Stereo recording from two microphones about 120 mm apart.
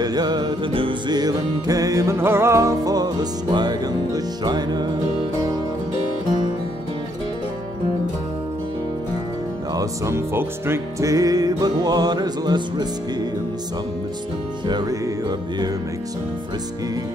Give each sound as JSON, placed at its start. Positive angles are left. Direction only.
{"t": 0.0, "sound": "music", "side_deg": -35}
{"t": 9.8, "sound": "music", "side_deg": -25}
{"t": 14.7, "sound": "music", "side_deg": -35}